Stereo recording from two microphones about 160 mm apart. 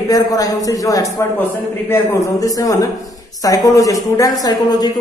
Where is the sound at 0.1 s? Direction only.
20° left (ahead or behind).